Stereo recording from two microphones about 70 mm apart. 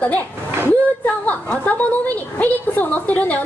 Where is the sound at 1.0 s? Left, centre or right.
Left.